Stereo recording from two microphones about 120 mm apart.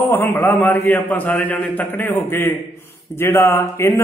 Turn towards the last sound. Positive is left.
turn(degrees=20)  # may be behind; listen again after turning